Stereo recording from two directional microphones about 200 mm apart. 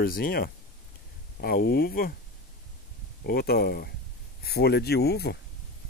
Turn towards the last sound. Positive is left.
turn(degrees=55)  # may be behind; listen again after turning